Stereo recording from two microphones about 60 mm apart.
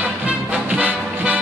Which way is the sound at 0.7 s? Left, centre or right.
Centre.